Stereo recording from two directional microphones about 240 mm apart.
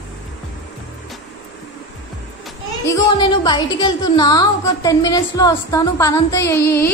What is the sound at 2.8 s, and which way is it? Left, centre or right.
A woman's voice, centre.